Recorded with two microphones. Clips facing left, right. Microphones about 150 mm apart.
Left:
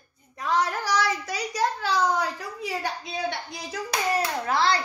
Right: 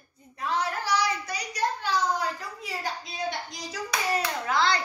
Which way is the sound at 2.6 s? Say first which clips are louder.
Left 6 dB; 65° left (ahead or behind).